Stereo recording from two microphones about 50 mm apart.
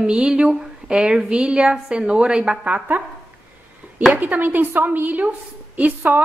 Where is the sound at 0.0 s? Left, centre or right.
Centre.